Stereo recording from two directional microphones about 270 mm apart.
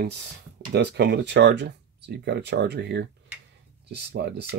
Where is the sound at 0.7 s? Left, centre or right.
Right.